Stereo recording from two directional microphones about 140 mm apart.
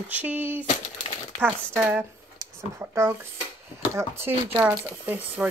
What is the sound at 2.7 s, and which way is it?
Speech, 20° right (ahead or behind).